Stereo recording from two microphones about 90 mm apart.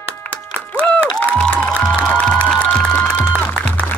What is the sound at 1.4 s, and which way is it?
Music, 15° left (ahead or behind).